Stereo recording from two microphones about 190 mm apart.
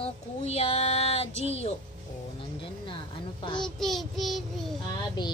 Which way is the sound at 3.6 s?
Centre (ahead or behind).